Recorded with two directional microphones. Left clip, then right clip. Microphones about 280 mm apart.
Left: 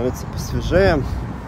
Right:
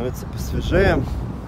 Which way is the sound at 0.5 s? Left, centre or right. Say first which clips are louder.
Left 2 dB; centre.